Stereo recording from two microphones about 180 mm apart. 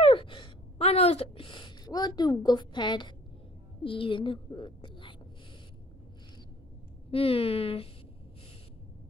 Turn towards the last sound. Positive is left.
turn(degrees=30)  # may be behind; listen again after turning